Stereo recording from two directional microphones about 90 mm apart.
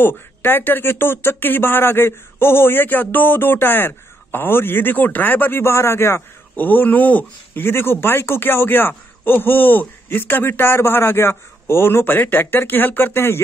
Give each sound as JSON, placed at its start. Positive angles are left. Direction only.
{"t": 0.0, "sound": "speech", "side_deg": 25}